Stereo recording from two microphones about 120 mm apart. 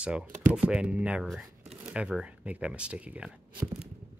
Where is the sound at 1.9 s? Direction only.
10° right (ahead or behind).